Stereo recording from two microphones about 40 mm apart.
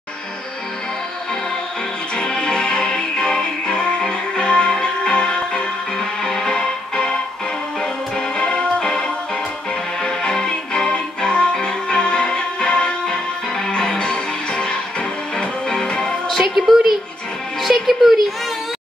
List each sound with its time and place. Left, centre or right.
2.1 s music: left
8.4 s music: left
16.3 s music: centre